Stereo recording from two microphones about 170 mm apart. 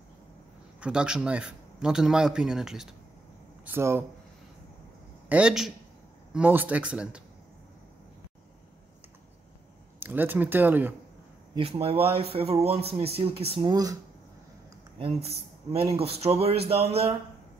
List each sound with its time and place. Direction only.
0.7 s a man's voice: 5° right (ahead or behind)
3.6 s speech: 15° right (ahead or behind)
5.3 s a man's voice: 5° right (ahead or behind)
9.9 s speech: 10° right (ahead or behind)
11.5 s speech: 35° right (ahead or behind)
15.0 s speech: 35° right (ahead or behind)